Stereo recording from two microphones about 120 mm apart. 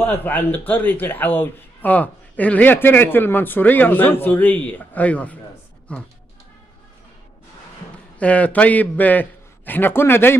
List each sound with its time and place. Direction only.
0.0 s a man's voice: 15° left (ahead or behind)
8.2 s a man's voice: 10° left (ahead or behind)